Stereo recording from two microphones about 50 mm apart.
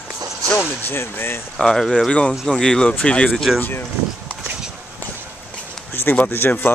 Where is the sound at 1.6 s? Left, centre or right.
Centre.